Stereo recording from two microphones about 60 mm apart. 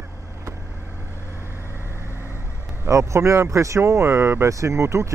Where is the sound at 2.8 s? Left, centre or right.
Right.